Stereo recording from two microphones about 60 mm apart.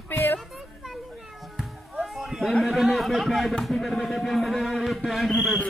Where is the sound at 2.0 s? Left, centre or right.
Centre.